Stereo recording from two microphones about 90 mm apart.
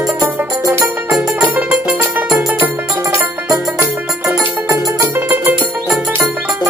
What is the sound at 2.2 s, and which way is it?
Music, 5° right (ahead or behind).